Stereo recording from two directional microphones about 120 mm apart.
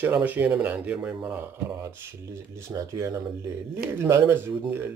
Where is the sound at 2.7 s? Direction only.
25° right (ahead or behind).